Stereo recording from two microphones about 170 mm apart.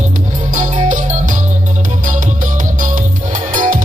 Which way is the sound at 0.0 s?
45° right (ahead or behind).